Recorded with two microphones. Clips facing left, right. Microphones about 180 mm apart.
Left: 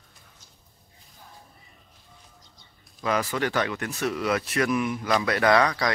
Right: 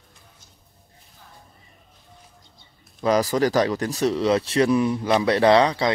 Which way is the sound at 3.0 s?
35° right (ahead or behind).